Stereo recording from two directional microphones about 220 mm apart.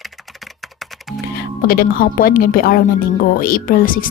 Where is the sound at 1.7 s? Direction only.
40° left (ahead or behind).